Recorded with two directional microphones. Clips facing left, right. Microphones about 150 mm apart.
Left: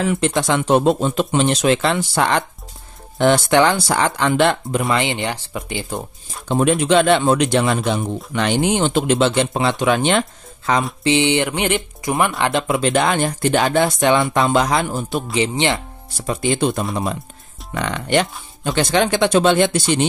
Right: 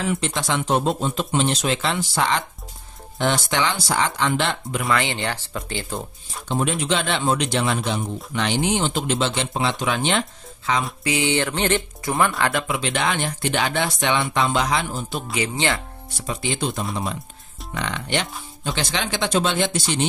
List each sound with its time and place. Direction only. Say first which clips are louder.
0.2 s speech: left 6 dB; 55° left (ahead or behind)
4.8 s speech: left 1 dB; 20° left (ahead or behind)
6.8 s speech: left 9 dB; 50° left (ahead or behind)
11.1 s speech: left 6 dB; 20° left (ahead or behind)
12.6 s speech: left 6 dB; 45° left (ahead or behind)
15.3 s speech: left 4 dB; 20° left (ahead or behind)
16.3 s speech: left 7 dB; 50° left (ahead or behind)